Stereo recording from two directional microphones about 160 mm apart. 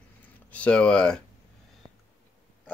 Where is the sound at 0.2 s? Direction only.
10° left (ahead or behind).